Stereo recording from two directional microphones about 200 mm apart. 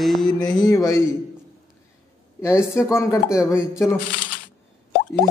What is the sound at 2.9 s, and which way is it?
Speech, 15° left (ahead or behind).